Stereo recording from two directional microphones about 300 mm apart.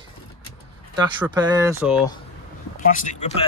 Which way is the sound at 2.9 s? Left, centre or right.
Left.